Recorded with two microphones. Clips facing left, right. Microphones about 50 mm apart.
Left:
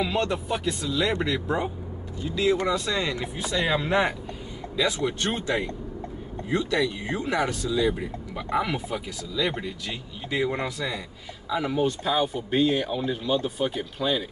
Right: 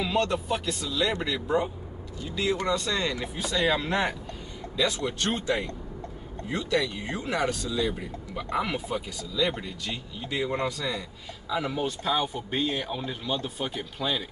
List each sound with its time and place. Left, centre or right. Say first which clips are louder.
0.0 s speech: even; centre